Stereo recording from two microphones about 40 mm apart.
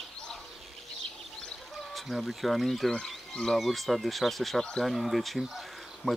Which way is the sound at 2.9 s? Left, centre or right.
Centre.